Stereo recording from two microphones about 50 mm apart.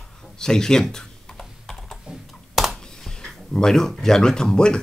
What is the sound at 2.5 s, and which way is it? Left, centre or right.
Computer keyboard, centre.